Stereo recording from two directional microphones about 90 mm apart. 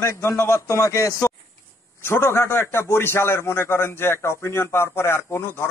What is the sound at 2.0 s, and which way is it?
A man's voice, 25° left (ahead or behind).